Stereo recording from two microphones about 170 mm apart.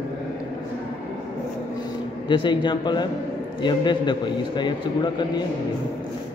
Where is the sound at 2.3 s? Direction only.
25° left (ahead or behind).